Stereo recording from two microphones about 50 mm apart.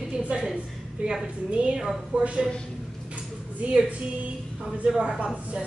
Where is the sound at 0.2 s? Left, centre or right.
Right.